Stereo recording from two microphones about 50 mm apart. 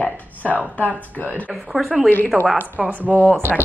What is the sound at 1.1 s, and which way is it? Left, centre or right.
Speech, left.